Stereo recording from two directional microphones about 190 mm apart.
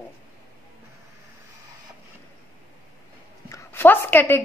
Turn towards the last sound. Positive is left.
turn(degrees=10)  # may be behind; listen again after turning